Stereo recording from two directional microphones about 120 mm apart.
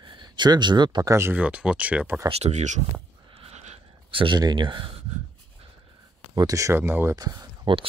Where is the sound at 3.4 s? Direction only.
65° right (ahead or behind).